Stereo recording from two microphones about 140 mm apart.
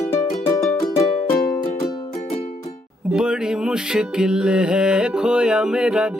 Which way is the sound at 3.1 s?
5° right (ahead or behind).